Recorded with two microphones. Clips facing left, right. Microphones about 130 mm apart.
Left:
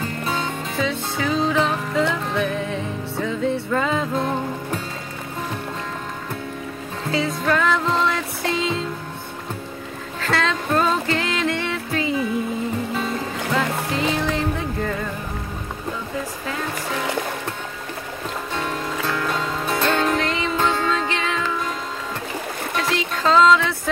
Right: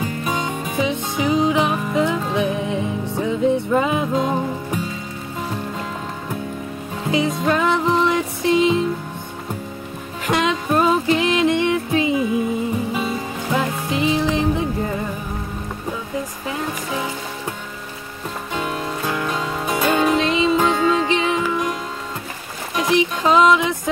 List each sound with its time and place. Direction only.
0.0 s music: 15° right (ahead or behind)
7.1 s music: 20° right (ahead or behind)
10.2 s music: 15° right (ahead or behind)
13.5 s music: 15° right (ahead or behind)
18.5 s music: 10° right (ahead or behind)
22.8 s music: 15° right (ahead or behind)